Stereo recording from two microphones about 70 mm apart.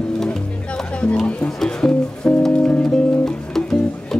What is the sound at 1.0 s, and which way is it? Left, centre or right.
Speech, centre.